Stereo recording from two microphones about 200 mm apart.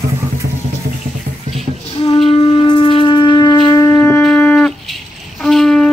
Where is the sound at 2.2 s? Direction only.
25° left (ahead or behind).